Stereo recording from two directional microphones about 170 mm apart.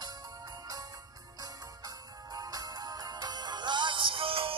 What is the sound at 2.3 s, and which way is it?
Music, 20° right (ahead or behind).